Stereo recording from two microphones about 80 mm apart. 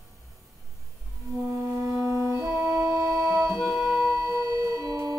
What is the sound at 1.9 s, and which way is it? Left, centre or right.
Organ, right.